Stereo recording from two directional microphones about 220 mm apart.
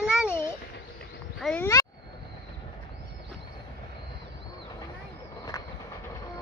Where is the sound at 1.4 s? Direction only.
10° left (ahead or behind).